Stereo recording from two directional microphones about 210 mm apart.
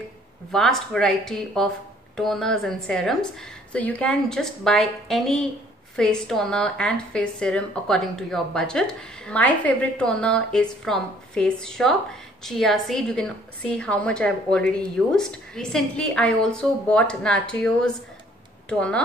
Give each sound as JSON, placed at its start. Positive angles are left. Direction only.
{"t": 0.5, "sound": "a woman's voice", "side_deg": 0}